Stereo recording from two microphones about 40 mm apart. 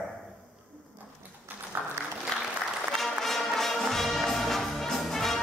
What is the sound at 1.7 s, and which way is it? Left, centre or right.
Applause, right.